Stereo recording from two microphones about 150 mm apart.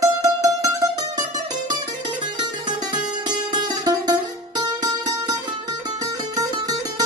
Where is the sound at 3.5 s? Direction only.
25° right (ahead or behind).